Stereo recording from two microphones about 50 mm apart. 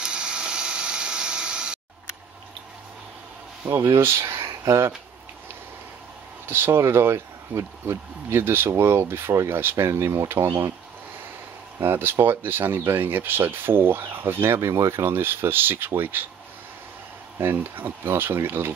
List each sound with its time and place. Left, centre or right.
0.0 s a sound: centre
3.7 s speech: right
4.0 s speech: right
6.4 s speech: right
9.8 s speech: right
11.8 s speech: right
14.6 s speech: right
17.6 s speech: right